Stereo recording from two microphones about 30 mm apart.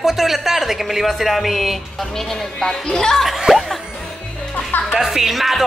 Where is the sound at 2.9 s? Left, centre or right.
Centre.